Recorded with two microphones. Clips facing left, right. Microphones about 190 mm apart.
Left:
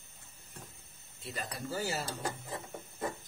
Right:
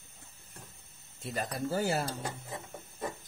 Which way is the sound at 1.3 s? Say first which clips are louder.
Right 6 dB; 50° right (ahead or behind).